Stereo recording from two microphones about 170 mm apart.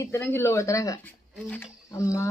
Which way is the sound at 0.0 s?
15° left (ahead or behind).